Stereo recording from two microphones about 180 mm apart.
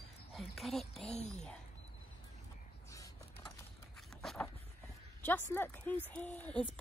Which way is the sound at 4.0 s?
Centre (ahead or behind).